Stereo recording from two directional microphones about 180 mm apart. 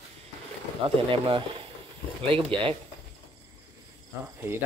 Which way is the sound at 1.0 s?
30° right (ahead or behind).